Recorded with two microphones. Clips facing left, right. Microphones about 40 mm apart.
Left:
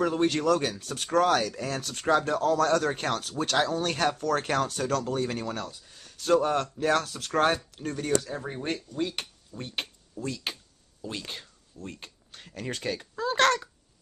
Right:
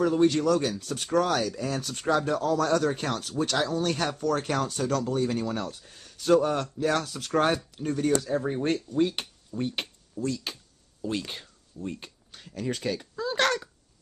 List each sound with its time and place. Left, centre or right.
0.0 s speech: centre
9.5 s a sound: centre
10.3 s speech: left
11.0 s a sound: centre
12.4 s speech: centre
12.7 s speech: centre